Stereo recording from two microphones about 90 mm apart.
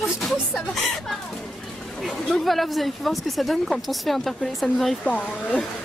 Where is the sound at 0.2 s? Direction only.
Centre (ahead or behind).